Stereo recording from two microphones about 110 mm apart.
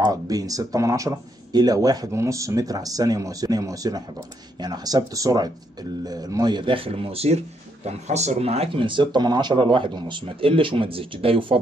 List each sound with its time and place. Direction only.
0.0 s speech: 35° right (ahead or behind); by 8.8 s 65° right (ahead or behind)
8.8 s speech: 45° right (ahead or behind)